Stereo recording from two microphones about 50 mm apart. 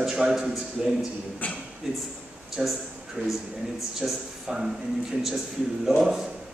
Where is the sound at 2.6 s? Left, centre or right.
Centre.